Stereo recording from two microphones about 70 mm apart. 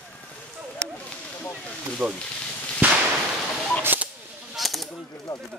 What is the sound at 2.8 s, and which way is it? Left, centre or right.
Whip, right.